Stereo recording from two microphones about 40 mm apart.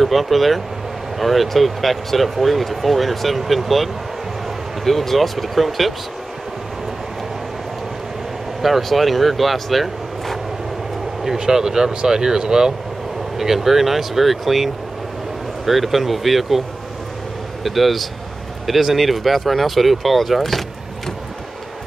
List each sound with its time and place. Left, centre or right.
0.0 s speech: centre
8.6 s speech: centre
11.2 s speech: centre
17.6 s speech: centre